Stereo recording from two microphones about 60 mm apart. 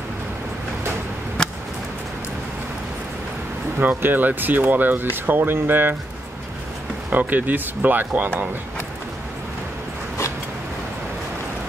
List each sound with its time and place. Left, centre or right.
1.4 s a sound: centre
3.9 s speech: right
7.1 s speech: right